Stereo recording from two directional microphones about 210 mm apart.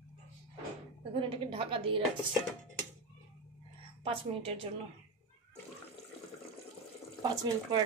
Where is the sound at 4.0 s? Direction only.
25° right (ahead or behind).